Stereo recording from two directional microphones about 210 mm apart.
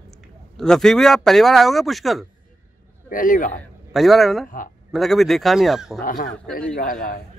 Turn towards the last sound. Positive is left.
turn(degrees=40)  # may be behind; listen again after turning